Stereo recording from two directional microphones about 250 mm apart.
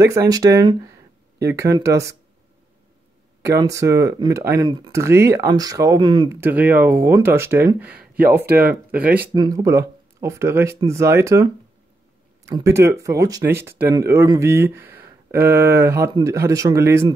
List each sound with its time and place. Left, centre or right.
0.3 s speech: centre
3.4 s speech: centre
8.0 s a sound: right
8.5 s speech: centre